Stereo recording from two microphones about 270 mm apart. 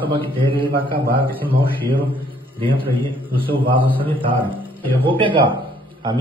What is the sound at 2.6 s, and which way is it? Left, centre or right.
Speech, centre.